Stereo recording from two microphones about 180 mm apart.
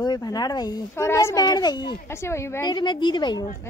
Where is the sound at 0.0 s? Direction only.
20° left (ahead or behind).